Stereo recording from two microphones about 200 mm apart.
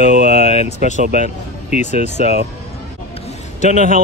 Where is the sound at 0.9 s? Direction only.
40° right (ahead or behind).